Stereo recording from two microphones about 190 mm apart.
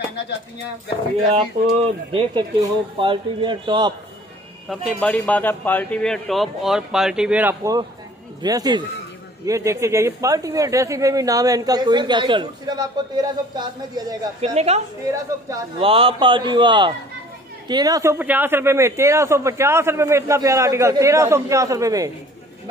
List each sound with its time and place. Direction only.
1.8 s speech: 25° right (ahead or behind)
4.6 s speech: 5° left (ahead or behind)
8.4 s speech: 20° right (ahead or behind)
14.4 s a woman's voice: 35° right (ahead or behind)
15.0 s a man's voice: 15° right (ahead or behind)
15.8 s a man's voice: 30° right (ahead or behind)